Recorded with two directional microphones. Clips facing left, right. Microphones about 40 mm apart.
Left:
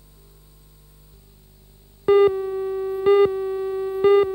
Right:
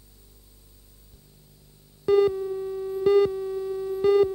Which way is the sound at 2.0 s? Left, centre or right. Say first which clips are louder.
Left 5 dB; left.